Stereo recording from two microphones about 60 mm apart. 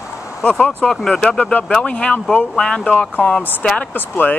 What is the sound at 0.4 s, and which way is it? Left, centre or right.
Speech, centre.